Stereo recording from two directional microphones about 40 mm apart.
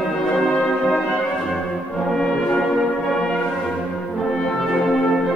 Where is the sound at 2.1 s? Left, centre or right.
Centre.